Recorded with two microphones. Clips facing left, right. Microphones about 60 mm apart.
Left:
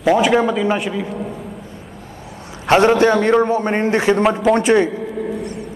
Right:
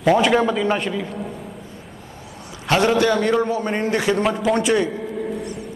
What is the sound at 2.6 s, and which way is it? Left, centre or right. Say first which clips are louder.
A man's voice: left 5 dB; left.